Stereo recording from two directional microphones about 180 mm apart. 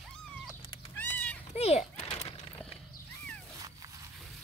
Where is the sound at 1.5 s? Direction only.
35° left (ahead or behind).